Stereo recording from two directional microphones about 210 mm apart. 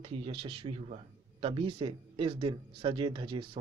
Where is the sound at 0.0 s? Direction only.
25° right (ahead or behind).